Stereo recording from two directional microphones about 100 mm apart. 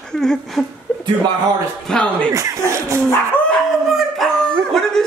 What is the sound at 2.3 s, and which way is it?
Speech, 35° right (ahead or behind).